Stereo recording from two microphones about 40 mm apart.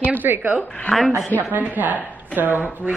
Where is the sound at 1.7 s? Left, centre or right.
Right.